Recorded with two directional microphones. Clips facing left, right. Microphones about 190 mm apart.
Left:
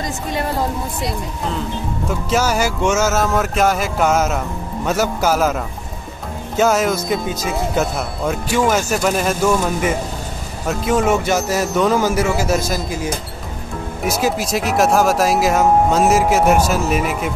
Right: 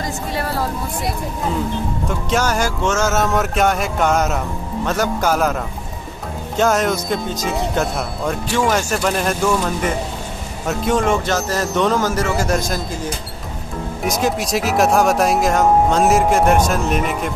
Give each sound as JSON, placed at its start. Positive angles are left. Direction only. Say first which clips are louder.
{"t": 0.3, "sound": "speech", "louder": "left 3 dB", "side_deg": 20}
{"t": 2.0, "sound": "speech", "louder": "left 2 dB", "side_deg": 5}